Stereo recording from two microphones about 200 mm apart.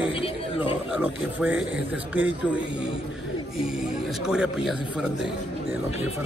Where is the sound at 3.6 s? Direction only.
5° right (ahead or behind).